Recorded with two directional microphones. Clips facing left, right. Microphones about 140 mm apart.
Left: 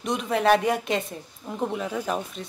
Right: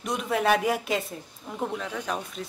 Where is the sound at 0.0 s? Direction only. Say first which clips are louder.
Left 2 dB; centre (ahead or behind).